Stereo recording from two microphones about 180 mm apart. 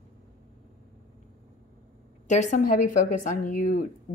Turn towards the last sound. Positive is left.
turn(degrees=45)  # may be behind; listen again after turning